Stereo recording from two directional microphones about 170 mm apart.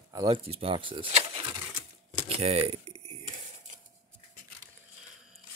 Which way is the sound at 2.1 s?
35° right (ahead or behind).